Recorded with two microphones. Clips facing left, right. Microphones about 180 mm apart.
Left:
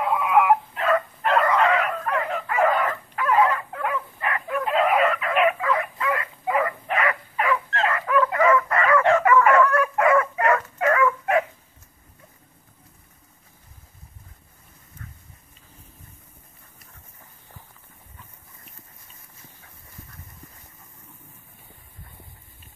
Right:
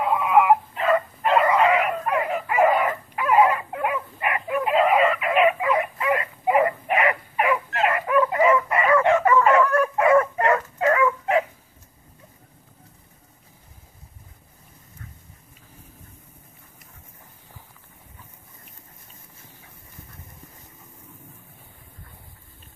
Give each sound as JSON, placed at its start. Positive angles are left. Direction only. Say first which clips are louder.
{"t": 0.0, "sound": "dog", "louder": "right 1 dB", "side_deg": 0}
{"t": 5.3, "sound": "chicken", "louder": "right 3 dB", "side_deg": -5}
{"t": 5.6, "sound": "dog", "louder": "right 2 dB", "side_deg": -20}
{"t": 8.9, "sound": "bow-wow", "louder": "even", "side_deg": -15}
{"t": 9.3, "sound": "dog", "louder": "even", "side_deg": -20}